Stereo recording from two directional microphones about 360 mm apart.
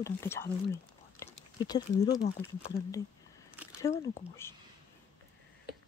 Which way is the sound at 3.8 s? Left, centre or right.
Centre.